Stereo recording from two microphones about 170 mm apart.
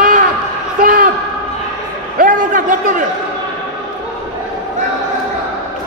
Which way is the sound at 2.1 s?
50° right (ahead or behind).